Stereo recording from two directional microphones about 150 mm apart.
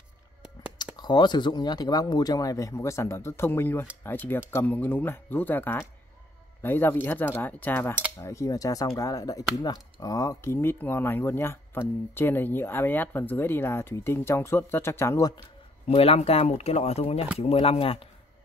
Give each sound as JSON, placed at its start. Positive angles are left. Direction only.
{"t": 0.9, "sound": "speech", "side_deg": 30}
{"t": 15.9, "sound": "speech", "side_deg": 45}